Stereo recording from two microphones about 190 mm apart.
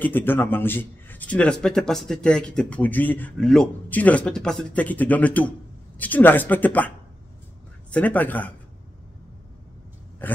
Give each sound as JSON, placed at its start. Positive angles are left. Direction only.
{"t": 0.0, "sound": "a man's voice", "side_deg": 10}
{"t": 7.9, "sound": "a man's voice", "side_deg": 10}
{"t": 10.2, "sound": "a man's voice", "side_deg": 10}